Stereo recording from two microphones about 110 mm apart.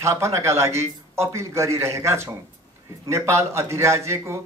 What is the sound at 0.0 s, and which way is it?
A man's voice, 25° right (ahead or behind).